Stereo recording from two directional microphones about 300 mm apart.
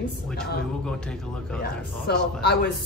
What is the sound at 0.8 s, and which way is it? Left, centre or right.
Speech, centre.